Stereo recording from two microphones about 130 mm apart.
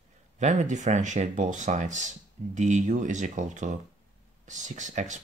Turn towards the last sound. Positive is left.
turn(degrees=-70)  # may be behind; listen again after turning